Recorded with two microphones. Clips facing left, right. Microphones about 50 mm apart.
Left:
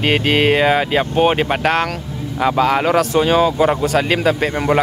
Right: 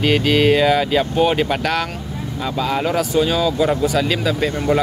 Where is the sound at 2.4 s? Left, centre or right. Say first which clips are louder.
Left 6 dB; left.